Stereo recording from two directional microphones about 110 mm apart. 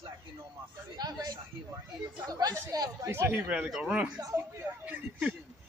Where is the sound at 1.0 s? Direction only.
40° right (ahead or behind); by 5.3 s 15° right (ahead or behind).